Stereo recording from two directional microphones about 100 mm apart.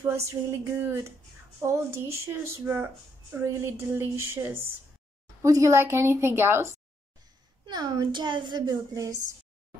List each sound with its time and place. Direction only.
0.0 s a woman's voice: 30° right (ahead or behind)
7.7 s a child's voice: 45° right (ahead or behind)